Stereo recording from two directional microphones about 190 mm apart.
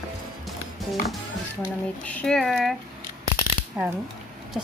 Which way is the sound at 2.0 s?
5° left (ahead or behind).